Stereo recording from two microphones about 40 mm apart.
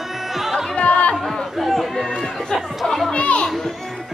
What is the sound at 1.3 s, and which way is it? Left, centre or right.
Chatter, centre.